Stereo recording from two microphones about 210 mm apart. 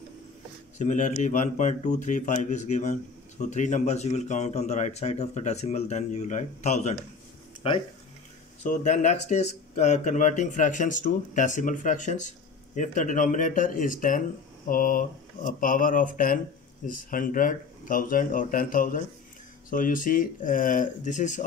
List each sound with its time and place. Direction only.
0.7 s speech: 35° left (ahead or behind)